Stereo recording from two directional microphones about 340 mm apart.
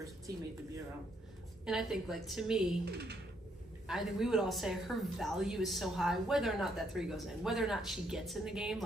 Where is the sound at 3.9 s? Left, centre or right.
Centre.